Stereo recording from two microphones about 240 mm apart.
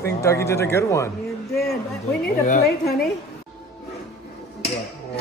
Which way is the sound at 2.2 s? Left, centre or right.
Left.